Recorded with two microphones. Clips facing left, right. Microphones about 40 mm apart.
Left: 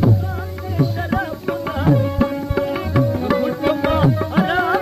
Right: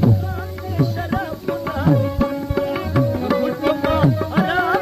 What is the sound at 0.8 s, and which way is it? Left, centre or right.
Music, centre.